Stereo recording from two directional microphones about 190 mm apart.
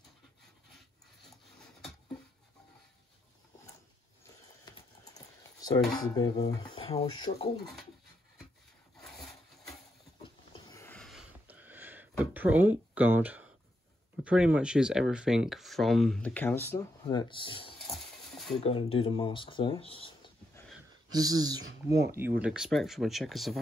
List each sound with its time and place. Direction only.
4.6 s typing: 20° left (ahead or behind)
5.9 s speech: 20° left (ahead or behind)
10.2 s a sound: 25° left (ahead or behind)
10.8 s a sound: 5° left (ahead or behind); by 13.5 s 10° right (ahead or behind)
14.2 s speech: 5° right (ahead or behind); by 17.7 s 25° left (ahead or behind)
17.7 s a sound: centre (ahead or behind)
18.6 s speech: 30° left (ahead or behind)
21.1 s speech: 20° right (ahead or behind)
22.4 s speech: 5° right (ahead or behind)